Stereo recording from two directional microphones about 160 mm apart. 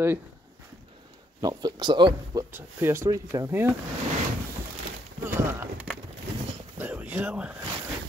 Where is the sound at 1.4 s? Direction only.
25° right (ahead or behind).